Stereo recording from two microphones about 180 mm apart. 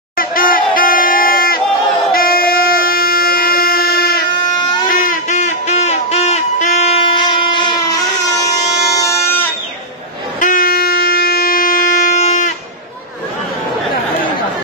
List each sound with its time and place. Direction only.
0.2 s crowd: 55° left (ahead or behind)
2.1 s train: 55° left (ahead or behind)
4.8 s a sound: 50° left (ahead or behind); by 9.5 s 15° left (ahead or behind)
10.4 s train: 50° left (ahead or behind)